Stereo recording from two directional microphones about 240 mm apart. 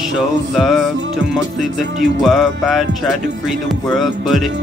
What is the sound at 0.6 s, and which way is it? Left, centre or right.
Speech, centre.